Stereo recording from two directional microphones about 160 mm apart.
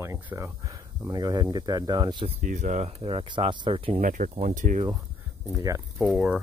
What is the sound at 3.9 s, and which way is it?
Speech, 55° right (ahead or behind).